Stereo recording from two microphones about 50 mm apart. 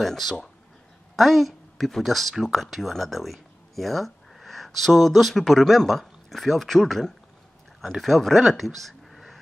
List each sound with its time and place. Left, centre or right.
0.0 s speech: centre